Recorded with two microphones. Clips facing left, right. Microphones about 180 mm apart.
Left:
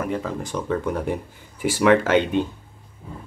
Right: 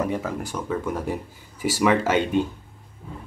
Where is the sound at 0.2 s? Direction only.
5° right (ahead or behind).